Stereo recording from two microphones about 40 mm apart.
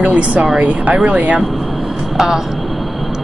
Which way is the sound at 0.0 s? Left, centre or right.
Right.